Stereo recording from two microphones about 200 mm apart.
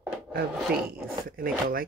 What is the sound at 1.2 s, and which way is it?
Speech, 45° right (ahead or behind).